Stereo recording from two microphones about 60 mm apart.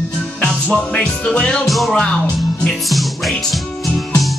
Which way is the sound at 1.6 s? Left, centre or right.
Centre.